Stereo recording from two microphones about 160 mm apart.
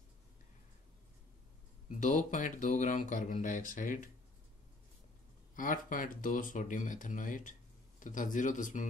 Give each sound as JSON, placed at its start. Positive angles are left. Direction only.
{"t": 1.9, "sound": "speech", "side_deg": 50}
{"t": 5.6, "sound": "speech", "side_deg": 55}